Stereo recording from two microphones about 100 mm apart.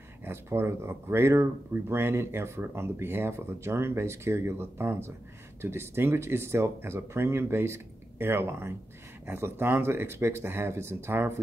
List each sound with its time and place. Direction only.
0.2 s speech: 25° right (ahead or behind)